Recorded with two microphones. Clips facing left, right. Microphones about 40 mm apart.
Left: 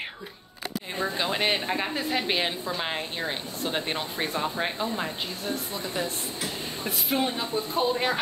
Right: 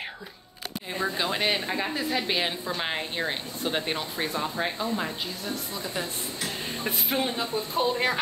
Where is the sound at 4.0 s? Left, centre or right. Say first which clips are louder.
Left 1 dB; centre.